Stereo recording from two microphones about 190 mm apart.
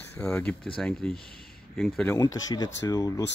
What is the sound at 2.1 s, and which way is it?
Speech, 15° left (ahead or behind).